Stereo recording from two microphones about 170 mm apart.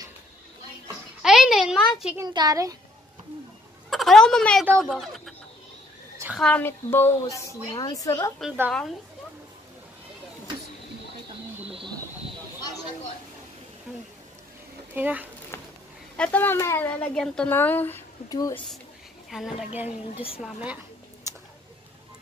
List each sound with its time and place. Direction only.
1.2 s a sound: centre (ahead or behind)
2.1 s a child's voice: 25° right (ahead or behind)
3.9 s speech: centre (ahead or behind)
6.3 s a woman's voice: 5° left (ahead or behind)
15.0 s speech: 10° right (ahead or behind)
16.2 s a woman's voice: 10° left (ahead or behind)
19.3 s speech: 5° right (ahead or behind)
20.3 s a sound: 5° right (ahead or behind)